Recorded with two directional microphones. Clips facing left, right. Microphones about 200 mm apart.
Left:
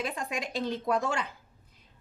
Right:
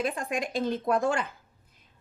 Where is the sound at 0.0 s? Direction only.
50° right (ahead or behind).